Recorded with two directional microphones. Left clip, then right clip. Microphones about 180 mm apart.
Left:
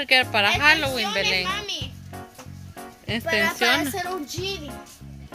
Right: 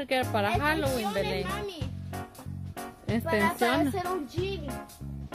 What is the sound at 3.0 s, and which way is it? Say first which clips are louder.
Speech: left 5 dB; 20° right (ahead or behind).